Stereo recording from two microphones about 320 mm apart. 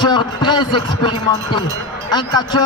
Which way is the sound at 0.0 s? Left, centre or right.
Centre.